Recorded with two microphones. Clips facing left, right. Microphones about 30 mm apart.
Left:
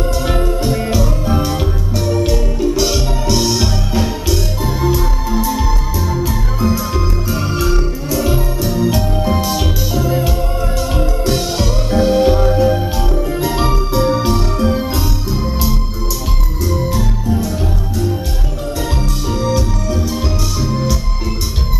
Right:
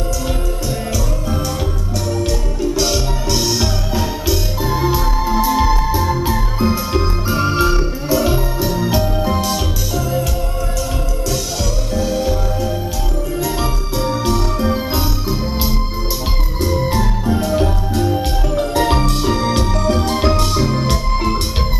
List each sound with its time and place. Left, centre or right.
0.3 s music: left; by 4.4 s centre
4.6 s music: centre
9.9 s music: centre
11.2 s music: left
13.4 s music: centre
14.6 s music: centre
16.7 s music: right
18.8 s music: right